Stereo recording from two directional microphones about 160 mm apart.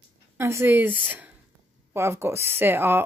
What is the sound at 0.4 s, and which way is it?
Speech, 15° right (ahead or behind).